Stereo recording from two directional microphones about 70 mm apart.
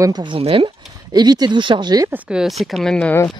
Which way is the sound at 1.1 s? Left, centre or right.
Right.